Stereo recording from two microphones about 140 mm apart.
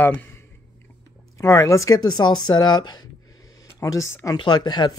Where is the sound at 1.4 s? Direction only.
20° left (ahead or behind).